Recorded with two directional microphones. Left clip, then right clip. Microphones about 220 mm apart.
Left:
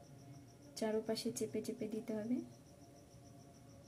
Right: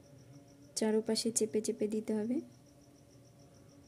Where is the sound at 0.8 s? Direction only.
50° right (ahead or behind).